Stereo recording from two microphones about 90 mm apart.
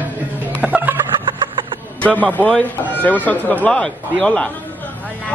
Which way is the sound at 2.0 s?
15° left (ahead or behind).